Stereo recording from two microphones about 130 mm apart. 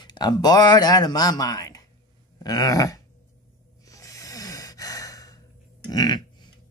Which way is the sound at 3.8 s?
25° left (ahead or behind).